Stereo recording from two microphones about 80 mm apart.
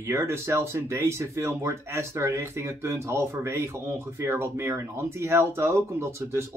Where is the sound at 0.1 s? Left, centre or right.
Right.